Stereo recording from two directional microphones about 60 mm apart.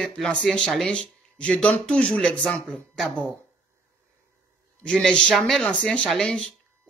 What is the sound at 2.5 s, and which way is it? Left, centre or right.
Speech, centre.